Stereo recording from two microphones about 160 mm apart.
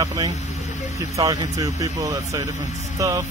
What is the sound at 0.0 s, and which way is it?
Speech, 25° right (ahead or behind).